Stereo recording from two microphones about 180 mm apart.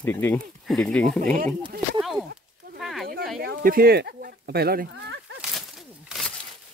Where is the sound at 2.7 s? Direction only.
Centre (ahead or behind).